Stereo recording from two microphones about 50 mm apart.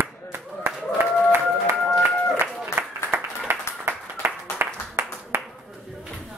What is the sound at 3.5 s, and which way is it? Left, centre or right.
Clapping, right.